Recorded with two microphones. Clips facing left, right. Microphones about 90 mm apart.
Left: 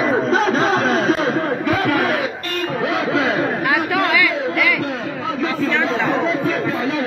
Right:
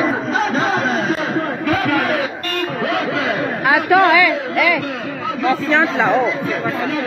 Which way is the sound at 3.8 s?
30° right (ahead or behind).